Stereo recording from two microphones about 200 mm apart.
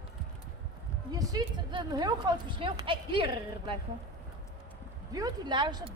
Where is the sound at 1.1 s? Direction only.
20° right (ahead or behind).